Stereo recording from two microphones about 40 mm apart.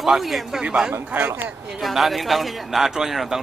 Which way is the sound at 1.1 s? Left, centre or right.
Right.